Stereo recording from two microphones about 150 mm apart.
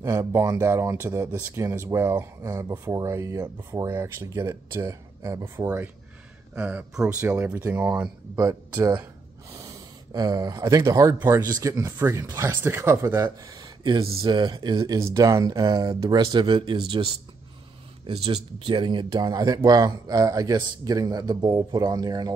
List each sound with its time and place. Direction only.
0.0 s speech: 20° right (ahead or behind)
8.4 s speech: 25° right (ahead or behind)